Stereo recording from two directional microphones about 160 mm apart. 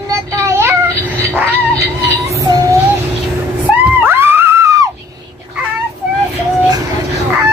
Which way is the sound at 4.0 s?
15° right (ahead or behind).